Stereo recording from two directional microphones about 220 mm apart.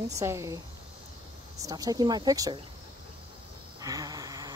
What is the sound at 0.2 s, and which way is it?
Speech, 15° right (ahead or behind).